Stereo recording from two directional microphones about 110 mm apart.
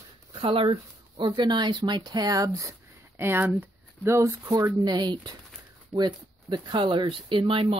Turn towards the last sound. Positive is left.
turn(degrees=-55)  # may be behind; listen again after turning